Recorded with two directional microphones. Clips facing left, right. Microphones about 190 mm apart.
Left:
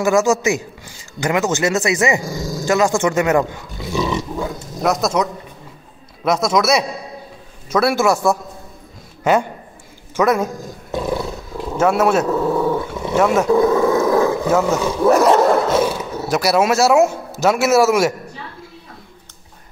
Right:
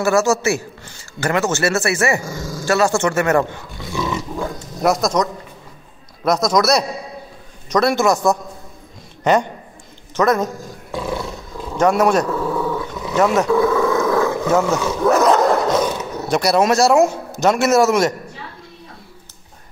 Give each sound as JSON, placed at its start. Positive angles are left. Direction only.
{"t": 0.0, "sound": "a man's voice", "side_deg": 15}
{"t": 4.4, "sound": "a man's voice", "side_deg": 0}
{"t": 11.7, "sound": "speech", "side_deg": 5}
{"t": 12.3, "sound": "dog", "side_deg": 25}
{"t": 13.1, "sound": "a man's voice", "side_deg": 5}
{"t": 13.5, "sound": "speech", "side_deg": 25}
{"t": 14.4, "sound": "speech", "side_deg": 5}